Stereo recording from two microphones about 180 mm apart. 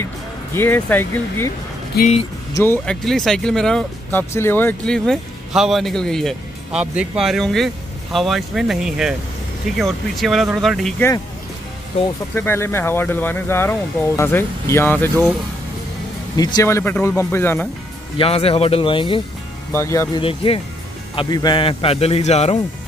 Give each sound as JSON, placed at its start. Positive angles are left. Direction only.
{"t": 0.6, "sound": "speech", "side_deg": 10}
{"t": 2.0, "sound": "speech", "side_deg": 60}
{"t": 2.5, "sound": "speech", "side_deg": 10}
{"t": 12.4, "sound": "speech", "side_deg": 10}
{"t": 16.3, "sound": "speech", "side_deg": 20}
{"t": 18.1, "sound": "speech", "side_deg": 30}
{"t": 19.7, "sound": "speech", "side_deg": 15}
{"t": 20.2, "sound": "a man's voice", "side_deg": 30}